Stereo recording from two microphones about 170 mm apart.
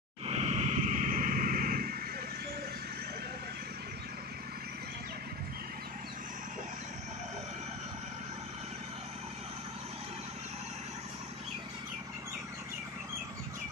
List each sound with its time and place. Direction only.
0.3 s vehicle: 40° right (ahead or behind); by 2.0 s 60° right (ahead or behind)